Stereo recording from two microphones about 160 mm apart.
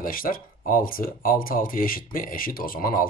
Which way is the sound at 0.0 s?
60° left (ahead or behind).